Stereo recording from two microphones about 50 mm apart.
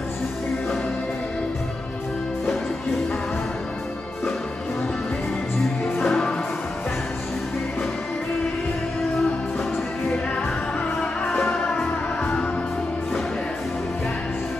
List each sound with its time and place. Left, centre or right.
6.0 s music: centre
11.3 s music: centre